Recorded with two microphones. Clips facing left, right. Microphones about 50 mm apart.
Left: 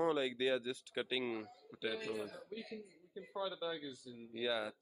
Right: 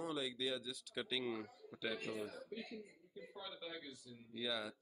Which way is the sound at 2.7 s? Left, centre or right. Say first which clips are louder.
Left 3 dB; left.